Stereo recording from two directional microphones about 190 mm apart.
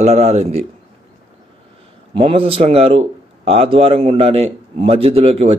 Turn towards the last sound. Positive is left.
turn(degrees=-35)  # may be behind; listen again after turning